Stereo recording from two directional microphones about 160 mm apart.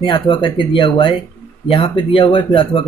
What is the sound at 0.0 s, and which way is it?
Speech, 30° left (ahead or behind).